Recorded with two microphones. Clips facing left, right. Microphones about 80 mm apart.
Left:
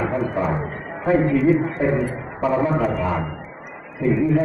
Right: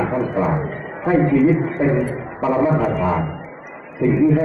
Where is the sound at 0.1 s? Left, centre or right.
Centre.